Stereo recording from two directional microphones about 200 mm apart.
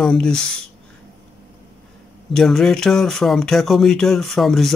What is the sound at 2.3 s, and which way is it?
Speech, centre (ahead or behind).